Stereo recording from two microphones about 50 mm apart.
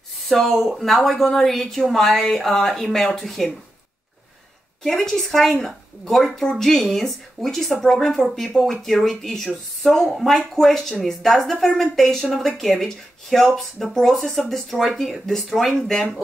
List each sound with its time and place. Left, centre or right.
0.3 s a woman's voice: centre
4.8 s a woman's voice: centre